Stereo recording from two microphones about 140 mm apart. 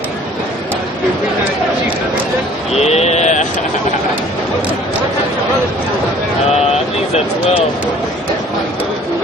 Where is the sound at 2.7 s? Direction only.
50° left (ahead or behind).